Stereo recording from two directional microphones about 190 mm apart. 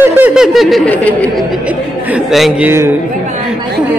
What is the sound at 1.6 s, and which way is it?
A man's voice, 5° right (ahead or behind).